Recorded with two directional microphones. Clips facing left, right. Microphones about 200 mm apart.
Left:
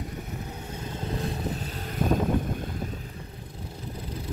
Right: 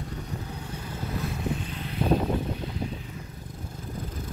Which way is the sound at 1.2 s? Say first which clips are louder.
Even; 40° left (ahead or behind).